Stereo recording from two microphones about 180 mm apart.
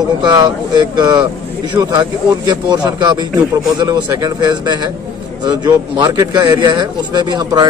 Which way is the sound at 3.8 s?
20° right (ahead or behind).